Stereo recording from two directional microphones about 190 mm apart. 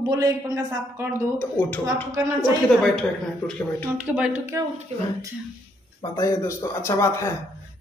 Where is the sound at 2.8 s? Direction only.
Centre (ahead or behind).